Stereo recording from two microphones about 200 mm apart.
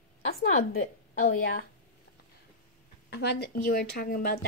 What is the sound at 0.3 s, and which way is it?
A woman's voice, 45° left (ahead or behind).